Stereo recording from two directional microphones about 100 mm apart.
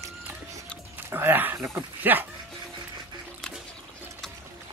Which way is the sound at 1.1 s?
20° right (ahead or behind).